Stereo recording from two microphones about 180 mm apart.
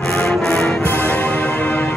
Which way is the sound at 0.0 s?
10° left (ahead or behind).